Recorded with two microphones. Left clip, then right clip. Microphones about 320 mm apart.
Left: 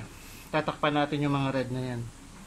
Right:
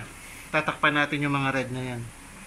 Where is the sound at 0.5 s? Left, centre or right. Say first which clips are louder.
Right 4 dB; centre.